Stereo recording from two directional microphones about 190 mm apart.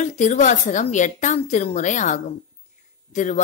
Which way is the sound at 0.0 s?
40° left (ahead or behind).